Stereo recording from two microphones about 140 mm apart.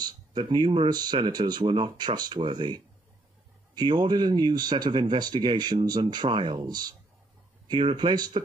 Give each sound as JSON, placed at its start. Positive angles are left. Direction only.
{"t": 0.0, "sound": "speech", "side_deg": -30}